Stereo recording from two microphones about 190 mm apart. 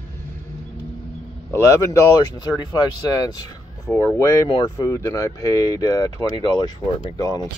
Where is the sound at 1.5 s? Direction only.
15° left (ahead or behind).